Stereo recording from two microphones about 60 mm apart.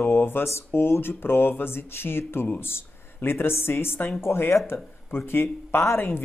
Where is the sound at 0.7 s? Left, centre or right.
Left.